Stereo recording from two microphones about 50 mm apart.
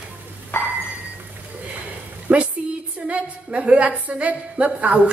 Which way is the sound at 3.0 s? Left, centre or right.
Right.